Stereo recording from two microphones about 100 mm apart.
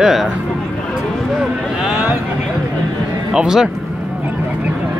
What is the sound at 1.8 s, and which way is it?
Speech, 15° right (ahead or behind).